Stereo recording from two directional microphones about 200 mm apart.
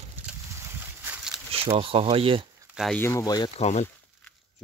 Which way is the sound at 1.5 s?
25° right (ahead or behind).